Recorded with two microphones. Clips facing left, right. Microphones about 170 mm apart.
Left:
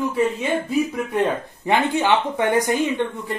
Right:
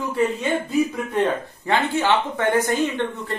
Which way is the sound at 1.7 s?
15° left (ahead or behind).